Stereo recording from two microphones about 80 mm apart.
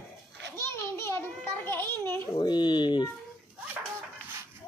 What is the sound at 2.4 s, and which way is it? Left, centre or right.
Speech, left.